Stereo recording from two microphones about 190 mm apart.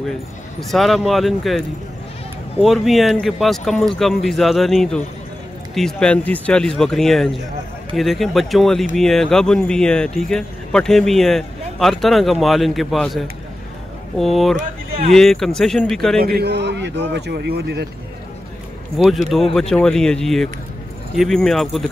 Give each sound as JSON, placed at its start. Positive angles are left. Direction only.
{"t": 0.6, "sound": "speech", "side_deg": 0}
{"t": 2.6, "sound": "speech", "side_deg": 0}
{"t": 16.2, "sound": "a man's voice", "side_deg": -55}
{"t": 18.9, "sound": "speech", "side_deg": 0}